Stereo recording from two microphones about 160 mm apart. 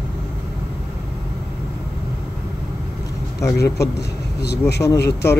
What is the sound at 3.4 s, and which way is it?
Speech, 20° left (ahead or behind).